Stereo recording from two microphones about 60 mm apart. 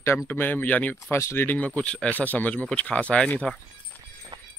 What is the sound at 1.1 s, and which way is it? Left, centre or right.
Speech, left.